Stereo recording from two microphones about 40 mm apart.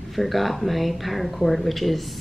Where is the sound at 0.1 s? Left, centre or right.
Centre.